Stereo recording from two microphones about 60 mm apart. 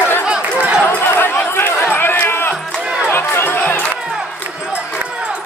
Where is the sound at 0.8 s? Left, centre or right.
Left.